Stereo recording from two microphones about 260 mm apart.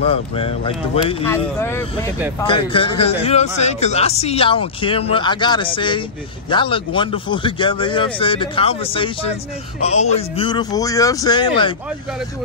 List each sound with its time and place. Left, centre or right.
0.0 s speech: left
1.2 s a man's voice: centre
2.4 s a man's voice: centre